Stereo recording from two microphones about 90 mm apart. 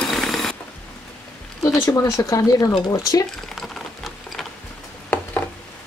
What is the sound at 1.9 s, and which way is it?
Speech, 35° left (ahead or behind).